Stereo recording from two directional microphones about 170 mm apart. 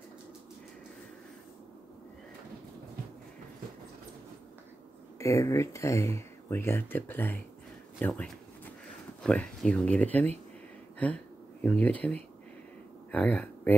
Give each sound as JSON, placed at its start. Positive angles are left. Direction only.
{"t": 5.2, "sound": "speech", "side_deg": 20}
{"t": 9.2, "sound": "speech", "side_deg": 5}